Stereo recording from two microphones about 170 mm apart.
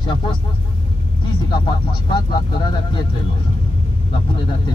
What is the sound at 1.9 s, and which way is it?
Speech, 30° left (ahead or behind).